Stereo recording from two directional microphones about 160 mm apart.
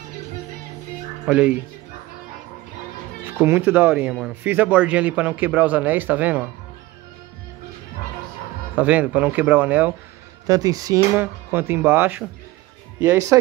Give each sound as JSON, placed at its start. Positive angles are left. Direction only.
{"t": 1.2, "sound": "speech", "side_deg": -5}
{"t": 3.3, "sound": "speech", "side_deg": -10}
{"t": 8.7, "sound": "speech", "side_deg": -10}
{"t": 10.4, "sound": "speech", "side_deg": -20}